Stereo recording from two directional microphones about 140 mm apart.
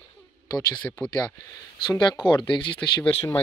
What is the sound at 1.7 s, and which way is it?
Speech, 30° left (ahead or behind).